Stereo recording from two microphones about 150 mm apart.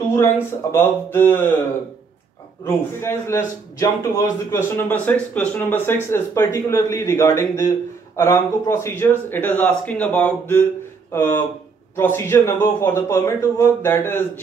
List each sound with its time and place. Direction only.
0.1 s a man's voice: 15° left (ahead or behind)
2.6 s a man's voice: 15° left (ahead or behind)